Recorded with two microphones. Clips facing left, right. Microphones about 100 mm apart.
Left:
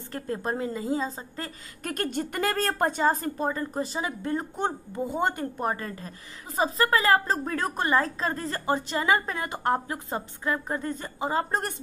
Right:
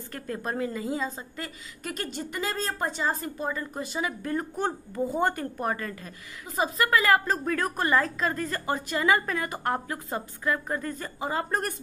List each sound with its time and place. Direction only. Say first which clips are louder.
0.1 s a woman's voice: left 3 dB; 30° left (ahead or behind)
1.8 s a woman's voice: left 5 dB; 50° left (ahead or behind); by 11.7 s 25° left (ahead or behind)